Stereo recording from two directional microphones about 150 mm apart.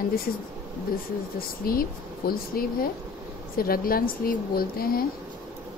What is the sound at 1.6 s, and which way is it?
A woman's voice, 80° left.